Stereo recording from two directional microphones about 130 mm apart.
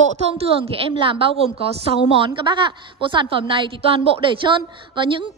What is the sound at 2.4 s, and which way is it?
A woman's voice, 35° right (ahead or behind).